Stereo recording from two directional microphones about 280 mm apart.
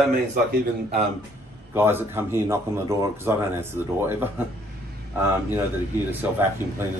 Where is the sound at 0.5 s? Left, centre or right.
Right.